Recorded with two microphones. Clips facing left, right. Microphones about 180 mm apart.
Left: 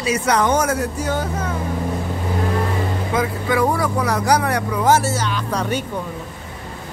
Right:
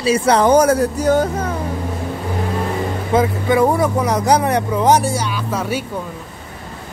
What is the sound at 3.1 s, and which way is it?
Speech, 25° right (ahead or behind).